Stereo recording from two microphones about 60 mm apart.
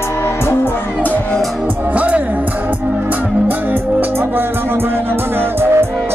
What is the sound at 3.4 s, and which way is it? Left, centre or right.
Music, right.